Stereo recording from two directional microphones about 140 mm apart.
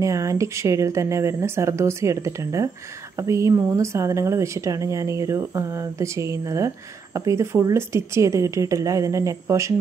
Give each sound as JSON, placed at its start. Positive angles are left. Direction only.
{"t": 0.0, "sound": "a woman's voice", "side_deg": -20}